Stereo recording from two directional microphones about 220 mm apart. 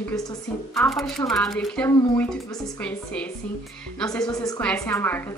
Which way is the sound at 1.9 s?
15° left (ahead or behind).